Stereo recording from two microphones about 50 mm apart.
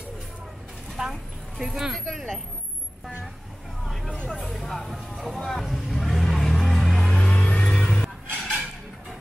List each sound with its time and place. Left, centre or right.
1.0 s a woman's voice: centre
1.6 s speech: centre
3.8 s vehicle: centre
4.4 s speech: centre
5.4 s vehicle: centre; by 7.6 s left
7.6 s music: centre